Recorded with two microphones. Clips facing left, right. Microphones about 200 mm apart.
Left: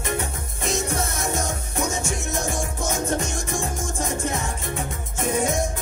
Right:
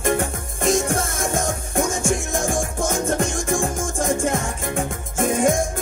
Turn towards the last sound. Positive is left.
turn(degrees=-50)  # may be behind; listen again after turning